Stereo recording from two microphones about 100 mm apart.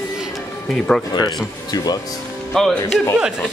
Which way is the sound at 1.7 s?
40° left (ahead or behind).